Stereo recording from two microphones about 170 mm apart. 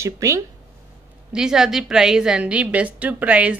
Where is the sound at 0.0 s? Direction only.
15° right (ahead or behind).